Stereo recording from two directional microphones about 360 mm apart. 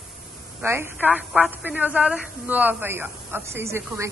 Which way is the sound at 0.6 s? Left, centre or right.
Centre.